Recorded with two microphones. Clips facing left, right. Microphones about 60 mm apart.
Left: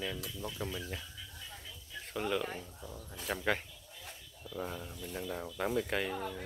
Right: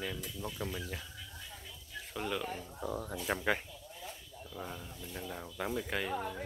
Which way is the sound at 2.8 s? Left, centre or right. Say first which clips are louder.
Right 10 dB; right.